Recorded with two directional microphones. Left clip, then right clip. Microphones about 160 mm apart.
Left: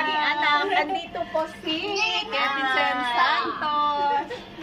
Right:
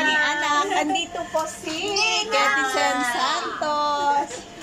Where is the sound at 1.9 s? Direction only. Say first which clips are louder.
Right 4 dB; 20° left (ahead or behind).